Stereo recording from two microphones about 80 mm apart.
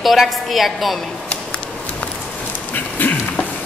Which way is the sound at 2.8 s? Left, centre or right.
Left.